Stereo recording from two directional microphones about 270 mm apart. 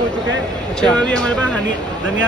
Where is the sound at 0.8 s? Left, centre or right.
Centre.